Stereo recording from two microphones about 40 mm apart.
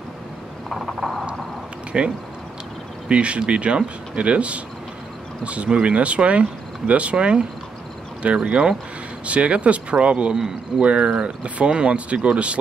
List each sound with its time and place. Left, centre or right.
0.7 s a sound: centre
1.9 s speech: right
9.2 s speech: right